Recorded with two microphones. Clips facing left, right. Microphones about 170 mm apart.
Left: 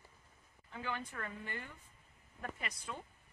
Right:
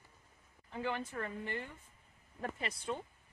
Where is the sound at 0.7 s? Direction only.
25° right (ahead or behind).